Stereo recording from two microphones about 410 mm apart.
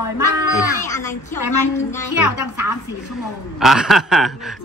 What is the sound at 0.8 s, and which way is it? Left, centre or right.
A woman's voice, centre.